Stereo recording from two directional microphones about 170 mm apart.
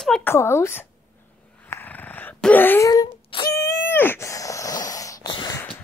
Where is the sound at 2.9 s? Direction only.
25° left (ahead or behind).